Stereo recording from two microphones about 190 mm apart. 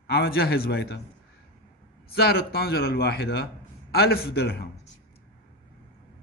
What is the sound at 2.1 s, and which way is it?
Speech, 55° left (ahead or behind).